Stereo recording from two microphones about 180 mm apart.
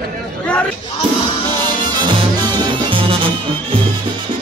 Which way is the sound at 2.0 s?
25° right (ahead or behind).